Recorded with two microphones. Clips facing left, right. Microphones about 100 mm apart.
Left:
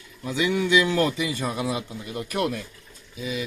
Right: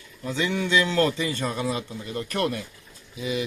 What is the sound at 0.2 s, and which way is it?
A man's voice, 10° left (ahead or behind).